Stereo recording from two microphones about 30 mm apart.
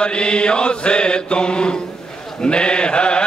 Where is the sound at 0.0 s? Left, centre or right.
Left.